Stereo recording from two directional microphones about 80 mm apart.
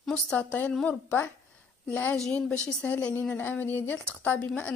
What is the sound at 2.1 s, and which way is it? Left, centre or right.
A woman's voice, centre.